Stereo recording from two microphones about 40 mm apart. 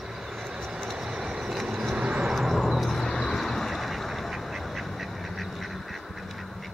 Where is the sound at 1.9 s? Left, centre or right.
Right.